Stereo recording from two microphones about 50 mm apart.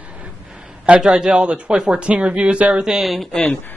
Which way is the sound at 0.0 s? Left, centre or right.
Right.